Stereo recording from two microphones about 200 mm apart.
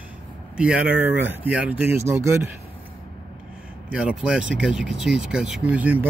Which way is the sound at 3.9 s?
5° right (ahead or behind).